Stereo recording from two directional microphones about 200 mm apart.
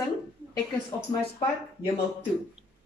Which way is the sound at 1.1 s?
25° left (ahead or behind).